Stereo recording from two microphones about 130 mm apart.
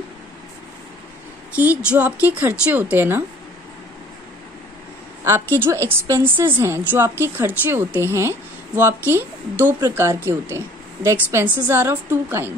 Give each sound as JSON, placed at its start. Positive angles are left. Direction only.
{"t": 1.5, "sound": "a woman's voice", "side_deg": -10}
{"t": 5.6, "sound": "a woman's voice", "side_deg": -20}